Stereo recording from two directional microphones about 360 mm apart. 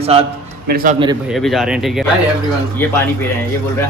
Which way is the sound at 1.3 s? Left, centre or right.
Centre.